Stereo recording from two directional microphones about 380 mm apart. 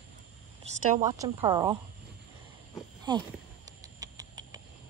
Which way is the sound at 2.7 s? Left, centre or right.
Centre.